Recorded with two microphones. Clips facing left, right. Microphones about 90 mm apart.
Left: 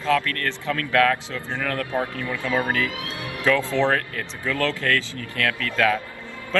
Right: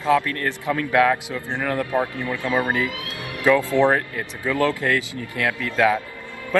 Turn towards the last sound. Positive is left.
turn(degrees=-20)  # may be behind; listen again after turning